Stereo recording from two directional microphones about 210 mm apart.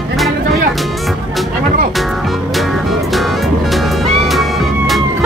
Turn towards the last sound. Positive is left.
turn(degrees=0)  # may be behind; listen again after turning